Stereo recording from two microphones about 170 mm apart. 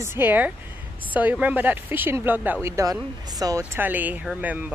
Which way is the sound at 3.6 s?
10° right (ahead or behind).